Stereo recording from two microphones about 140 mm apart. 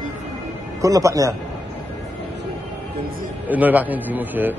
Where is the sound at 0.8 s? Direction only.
25° right (ahead or behind).